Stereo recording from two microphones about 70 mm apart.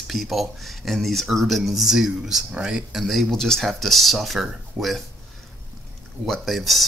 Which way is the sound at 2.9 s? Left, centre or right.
Centre.